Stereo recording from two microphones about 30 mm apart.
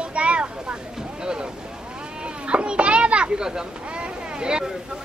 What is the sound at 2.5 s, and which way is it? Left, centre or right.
Children playing, right.